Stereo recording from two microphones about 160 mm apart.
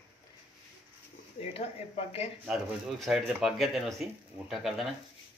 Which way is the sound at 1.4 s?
40° left (ahead or behind).